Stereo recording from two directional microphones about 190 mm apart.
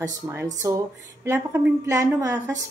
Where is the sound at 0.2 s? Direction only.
15° right (ahead or behind).